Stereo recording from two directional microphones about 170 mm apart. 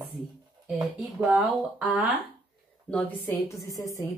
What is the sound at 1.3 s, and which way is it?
Speech, 10° right (ahead or behind).